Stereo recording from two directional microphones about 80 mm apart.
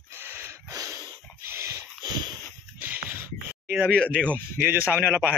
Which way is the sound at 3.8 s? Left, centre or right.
Centre.